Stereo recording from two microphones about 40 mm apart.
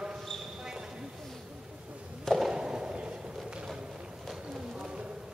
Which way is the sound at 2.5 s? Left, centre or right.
Right.